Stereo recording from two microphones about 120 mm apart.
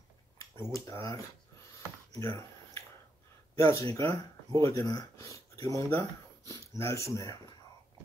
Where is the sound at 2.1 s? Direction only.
25° left (ahead or behind).